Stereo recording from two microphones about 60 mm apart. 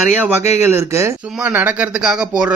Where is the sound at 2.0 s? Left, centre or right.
Centre.